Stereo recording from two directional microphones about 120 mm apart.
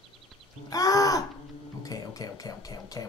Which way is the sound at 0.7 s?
30° left (ahead or behind).